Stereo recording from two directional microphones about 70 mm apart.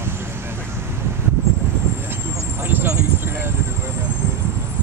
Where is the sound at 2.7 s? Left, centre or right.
Right.